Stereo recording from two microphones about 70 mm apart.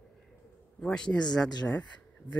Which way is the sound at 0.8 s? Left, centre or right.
Centre.